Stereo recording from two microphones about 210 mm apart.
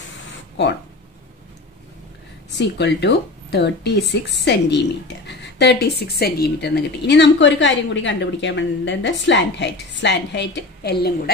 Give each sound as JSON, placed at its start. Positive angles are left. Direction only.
{"t": 2.5, "sound": "speech", "side_deg": 55}